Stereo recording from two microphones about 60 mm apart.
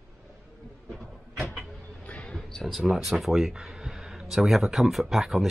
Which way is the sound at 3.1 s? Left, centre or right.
Centre.